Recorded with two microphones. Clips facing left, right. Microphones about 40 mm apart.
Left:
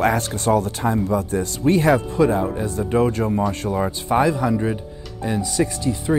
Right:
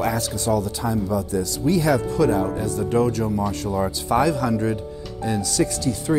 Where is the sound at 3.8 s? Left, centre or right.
Left.